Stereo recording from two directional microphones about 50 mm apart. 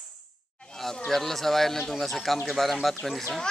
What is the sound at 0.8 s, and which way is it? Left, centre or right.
Speech, centre.